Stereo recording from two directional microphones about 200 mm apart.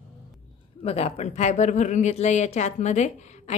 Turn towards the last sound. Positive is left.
turn(degrees=35)  # may be behind; listen again after turning